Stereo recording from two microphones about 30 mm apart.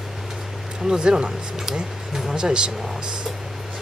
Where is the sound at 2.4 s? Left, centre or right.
Right.